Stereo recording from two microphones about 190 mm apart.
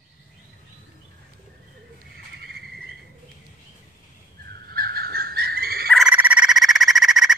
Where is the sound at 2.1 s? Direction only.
55° right (ahead or behind).